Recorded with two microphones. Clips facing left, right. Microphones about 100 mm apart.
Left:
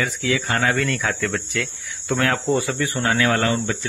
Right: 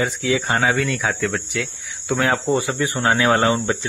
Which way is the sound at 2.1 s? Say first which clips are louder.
Right 1 dB; 15° right (ahead or behind).